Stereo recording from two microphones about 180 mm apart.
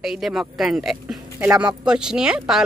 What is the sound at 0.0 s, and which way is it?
Speech, centre (ahead or behind).